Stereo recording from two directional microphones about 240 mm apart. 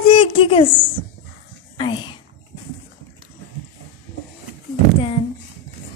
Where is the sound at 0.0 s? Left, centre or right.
Left.